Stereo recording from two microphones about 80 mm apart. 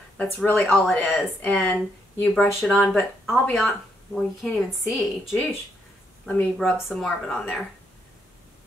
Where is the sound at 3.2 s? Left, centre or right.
Centre.